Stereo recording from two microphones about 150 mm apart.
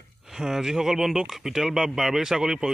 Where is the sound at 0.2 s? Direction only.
Centre (ahead or behind).